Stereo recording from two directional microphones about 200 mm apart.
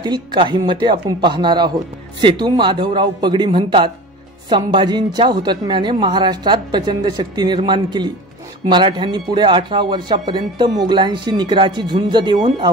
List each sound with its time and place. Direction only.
0.0 s a man's voice: 20° right (ahead or behind)
12.4 s speech: 35° right (ahead or behind)